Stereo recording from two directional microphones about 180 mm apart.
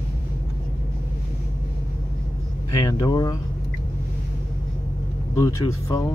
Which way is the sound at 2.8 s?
20° left (ahead or behind).